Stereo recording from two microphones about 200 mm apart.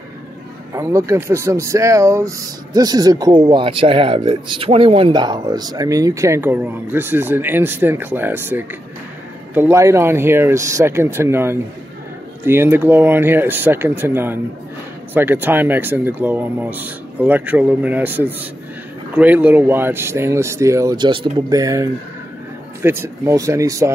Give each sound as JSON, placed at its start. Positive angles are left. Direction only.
{"t": 0.7, "sound": "speech", "side_deg": -15}